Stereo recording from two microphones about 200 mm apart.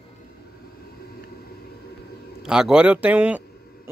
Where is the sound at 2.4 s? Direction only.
5° right (ahead or behind).